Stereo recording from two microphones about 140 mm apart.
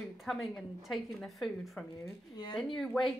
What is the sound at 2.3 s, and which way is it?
Speech, 30° left (ahead or behind).